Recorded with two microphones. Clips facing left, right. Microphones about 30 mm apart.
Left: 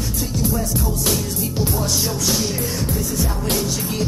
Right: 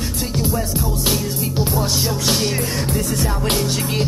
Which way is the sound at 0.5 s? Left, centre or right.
Right.